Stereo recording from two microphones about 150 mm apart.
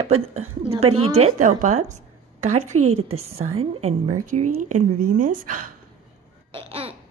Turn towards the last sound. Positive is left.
turn(degrees=-40)  # may be behind; listen again after turning